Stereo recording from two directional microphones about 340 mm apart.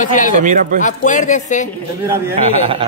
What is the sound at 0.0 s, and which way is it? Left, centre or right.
Speech, left.